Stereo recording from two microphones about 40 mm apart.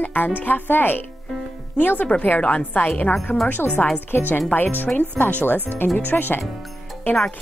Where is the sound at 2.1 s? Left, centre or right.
Left.